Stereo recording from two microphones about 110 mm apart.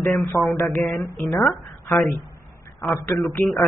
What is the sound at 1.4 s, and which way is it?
Speech, centre (ahead or behind).